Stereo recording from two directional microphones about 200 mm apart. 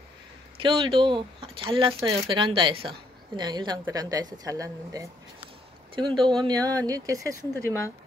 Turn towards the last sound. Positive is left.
turn(degrees=-15)  # may be behind; listen again after turning